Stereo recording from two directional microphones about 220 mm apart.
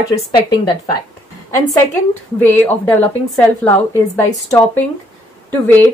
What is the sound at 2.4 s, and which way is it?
A woman's voice, 5° left (ahead or behind).